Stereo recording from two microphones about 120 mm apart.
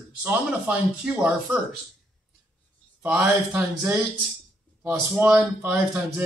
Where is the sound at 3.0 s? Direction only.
15° right (ahead or behind).